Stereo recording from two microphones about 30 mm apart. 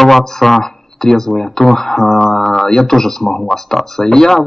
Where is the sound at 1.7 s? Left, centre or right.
Centre.